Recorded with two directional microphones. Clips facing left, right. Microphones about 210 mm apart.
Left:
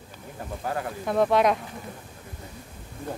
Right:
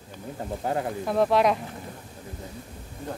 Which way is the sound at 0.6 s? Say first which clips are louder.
Right 3 dB; 25° right (ahead or behind).